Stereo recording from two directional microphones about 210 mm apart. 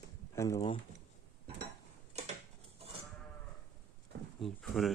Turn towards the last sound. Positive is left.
turn(degrees=0)  # may be behind; listen again after turning